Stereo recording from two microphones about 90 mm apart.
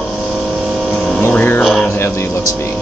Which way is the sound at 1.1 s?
20° left (ahead or behind).